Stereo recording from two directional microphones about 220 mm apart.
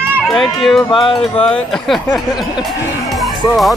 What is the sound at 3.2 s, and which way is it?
Music, centre (ahead or behind).